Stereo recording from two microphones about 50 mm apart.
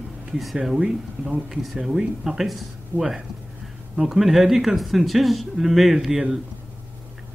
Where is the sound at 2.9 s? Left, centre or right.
Left.